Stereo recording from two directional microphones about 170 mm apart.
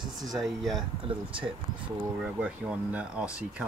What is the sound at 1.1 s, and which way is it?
Speech, 30° right (ahead or behind).